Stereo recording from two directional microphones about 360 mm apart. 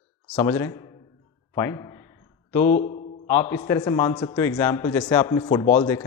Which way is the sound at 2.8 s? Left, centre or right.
Centre.